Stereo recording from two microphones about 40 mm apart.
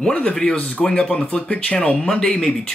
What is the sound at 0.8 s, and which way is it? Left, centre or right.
Speech, left.